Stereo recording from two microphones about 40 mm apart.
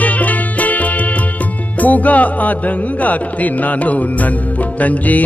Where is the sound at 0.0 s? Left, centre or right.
Left.